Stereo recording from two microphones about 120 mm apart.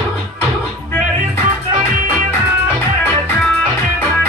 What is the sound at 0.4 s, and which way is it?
Music, 15° left (ahead or behind).